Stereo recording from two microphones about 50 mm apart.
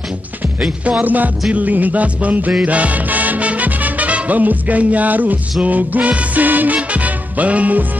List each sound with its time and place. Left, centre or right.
1.0 s music: right